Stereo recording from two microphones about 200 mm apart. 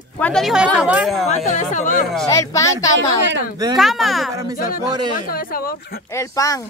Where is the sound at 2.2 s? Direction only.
15° left (ahead or behind).